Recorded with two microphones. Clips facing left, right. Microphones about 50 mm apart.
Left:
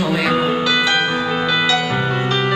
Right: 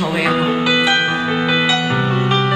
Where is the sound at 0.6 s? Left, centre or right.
Centre.